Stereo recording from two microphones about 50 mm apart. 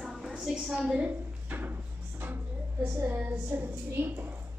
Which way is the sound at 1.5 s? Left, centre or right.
Right.